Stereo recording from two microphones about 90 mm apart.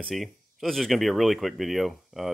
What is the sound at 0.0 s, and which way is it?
Speech, centre (ahead or behind).